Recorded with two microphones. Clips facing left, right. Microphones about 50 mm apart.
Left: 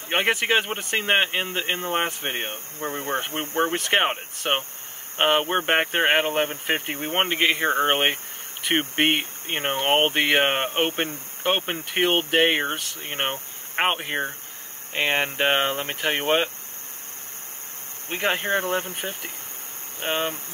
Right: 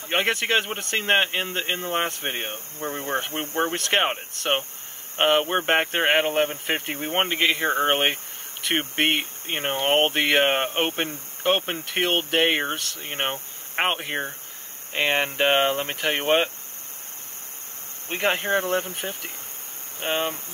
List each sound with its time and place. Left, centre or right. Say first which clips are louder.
0.1 s speech: left 1 dB; centre
18.4 s speech: right 1 dB; left
18.9 s speech: even; centre